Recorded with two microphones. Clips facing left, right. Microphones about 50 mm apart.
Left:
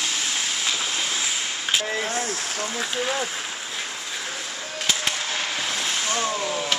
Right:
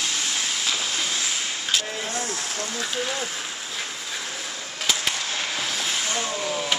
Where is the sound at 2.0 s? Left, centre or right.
Left.